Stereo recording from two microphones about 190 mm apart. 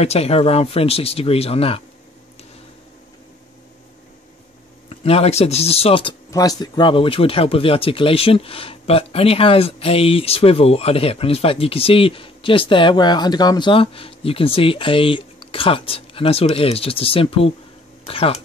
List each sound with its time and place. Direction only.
0.0 s speech: 35° left (ahead or behind)
4.8 s speech: 30° left (ahead or behind)